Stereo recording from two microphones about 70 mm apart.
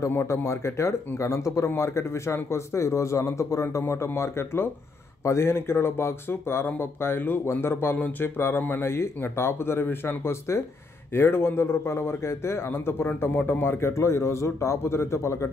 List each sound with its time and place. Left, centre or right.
0.1 s speech: left
3.8 s speech: left